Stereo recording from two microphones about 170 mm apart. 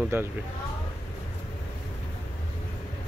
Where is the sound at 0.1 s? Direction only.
15° right (ahead or behind).